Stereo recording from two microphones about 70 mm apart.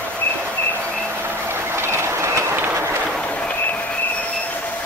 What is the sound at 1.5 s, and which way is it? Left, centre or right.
Train, right.